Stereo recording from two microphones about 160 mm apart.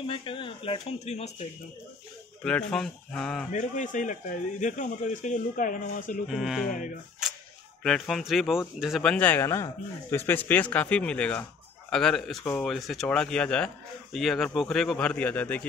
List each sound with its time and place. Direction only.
0.0 s speech: 35° left (ahead or behind)
2.4 s speech: 5° left (ahead or behind)
3.5 s a man's voice: 50° left (ahead or behind)
6.2 s speech: centre (ahead or behind)
7.2 s a sound: 5° right (ahead or behind)
7.8 s speech: centre (ahead or behind)